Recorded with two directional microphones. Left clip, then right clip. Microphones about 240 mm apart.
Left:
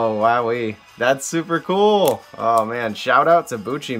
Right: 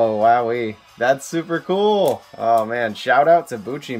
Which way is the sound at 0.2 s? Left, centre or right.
Centre.